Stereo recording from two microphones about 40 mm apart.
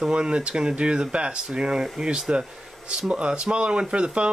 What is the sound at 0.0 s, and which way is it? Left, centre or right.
Speech, right.